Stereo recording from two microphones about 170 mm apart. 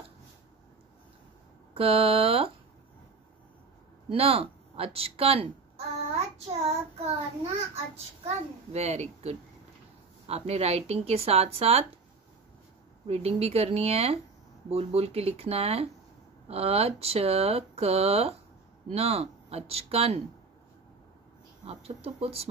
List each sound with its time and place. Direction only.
1.7 s speech: 35° right (ahead or behind)
4.1 s a woman's voice: 35° right (ahead or behind)
8.7 s speech: 40° right (ahead or behind)
13.0 s speech: 35° right (ahead or behind)
21.6 s speech: 35° right (ahead or behind)